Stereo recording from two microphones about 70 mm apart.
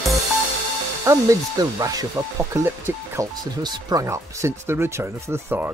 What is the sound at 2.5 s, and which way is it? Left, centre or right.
Speech, right.